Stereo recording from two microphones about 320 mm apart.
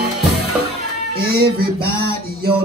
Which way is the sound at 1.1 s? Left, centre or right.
Right.